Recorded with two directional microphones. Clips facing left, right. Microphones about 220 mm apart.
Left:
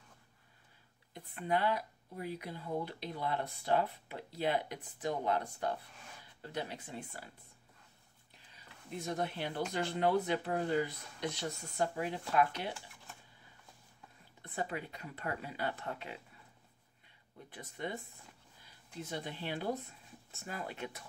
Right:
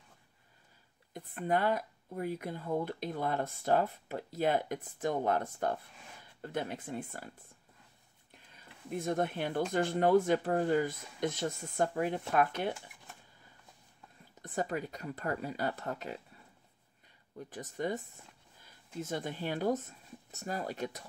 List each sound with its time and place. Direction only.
1.1 s speech: 50° right (ahead or behind)
8.9 s speech: 50° right (ahead or behind)
14.4 s speech: 45° right (ahead or behind)
17.5 s speech: 45° right (ahead or behind)